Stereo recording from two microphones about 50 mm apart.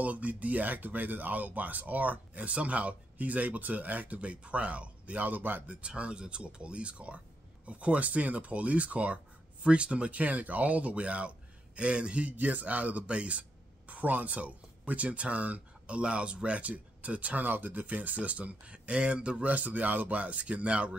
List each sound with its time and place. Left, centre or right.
0.0 s speech: right
5.8 s speech: right